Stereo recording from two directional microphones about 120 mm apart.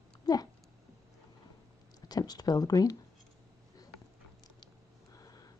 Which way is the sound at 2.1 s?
30° left (ahead or behind).